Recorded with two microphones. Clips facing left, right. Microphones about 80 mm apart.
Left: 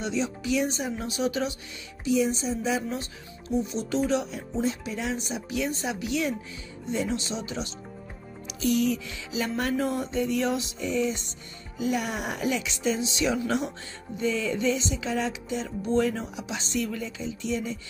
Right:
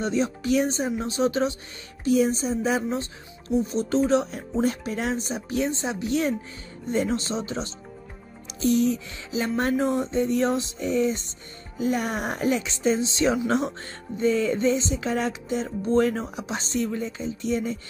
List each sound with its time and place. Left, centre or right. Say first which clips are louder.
0.0 s music: right 4 dB; right
2.0 s speech: right 3 dB; right
3.4 s music: right 4 dB; right